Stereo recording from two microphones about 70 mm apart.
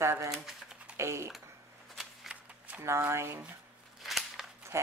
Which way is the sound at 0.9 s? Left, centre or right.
Right.